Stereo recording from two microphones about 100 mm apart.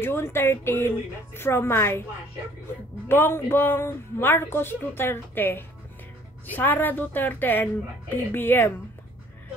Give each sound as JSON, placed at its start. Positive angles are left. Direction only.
{"t": 0.0, "sound": "speech", "side_deg": 25}
{"t": 3.1, "sound": "speech", "side_deg": 20}